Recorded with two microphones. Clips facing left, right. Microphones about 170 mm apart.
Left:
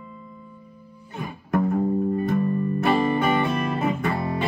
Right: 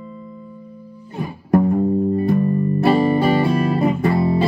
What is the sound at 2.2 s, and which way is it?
Music, 35° right (ahead or behind).